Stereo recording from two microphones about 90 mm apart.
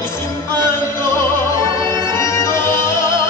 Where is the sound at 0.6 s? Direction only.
30° left (ahead or behind).